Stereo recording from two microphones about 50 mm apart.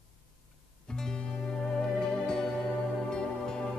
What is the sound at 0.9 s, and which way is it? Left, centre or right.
Music, centre.